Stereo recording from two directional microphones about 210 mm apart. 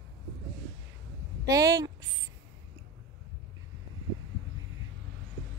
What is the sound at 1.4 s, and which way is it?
Speech, 15° right (ahead or behind).